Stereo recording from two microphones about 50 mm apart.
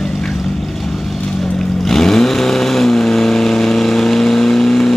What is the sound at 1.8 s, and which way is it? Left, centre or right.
Vehicle, centre.